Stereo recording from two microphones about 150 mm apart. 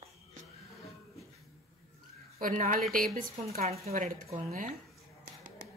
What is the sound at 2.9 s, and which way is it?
Speech, 70° right (ahead or behind).